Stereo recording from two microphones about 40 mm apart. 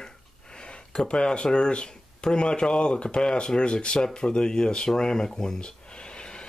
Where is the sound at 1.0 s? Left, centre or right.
Left.